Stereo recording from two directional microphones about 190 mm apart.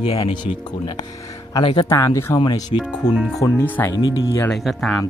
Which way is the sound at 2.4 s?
25° left (ahead or behind).